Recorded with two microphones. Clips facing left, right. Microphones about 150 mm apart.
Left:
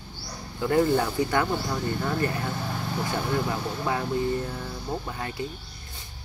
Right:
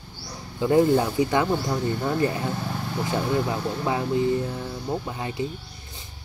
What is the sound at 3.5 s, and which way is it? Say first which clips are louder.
Speech: right 2 dB; 20° right (ahead or behind).